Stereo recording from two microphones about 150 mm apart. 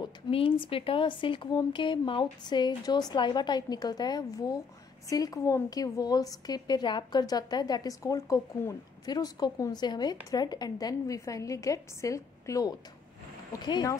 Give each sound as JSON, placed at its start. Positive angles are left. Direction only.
{"t": 0.0, "sound": "a woman's voice", "side_deg": 35}